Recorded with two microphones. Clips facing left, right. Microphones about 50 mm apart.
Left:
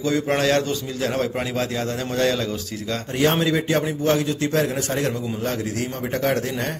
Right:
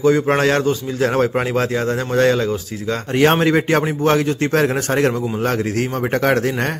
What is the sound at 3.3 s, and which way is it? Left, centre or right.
A man's voice, right.